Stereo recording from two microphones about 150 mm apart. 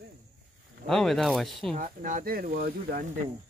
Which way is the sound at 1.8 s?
60° right (ahead or behind).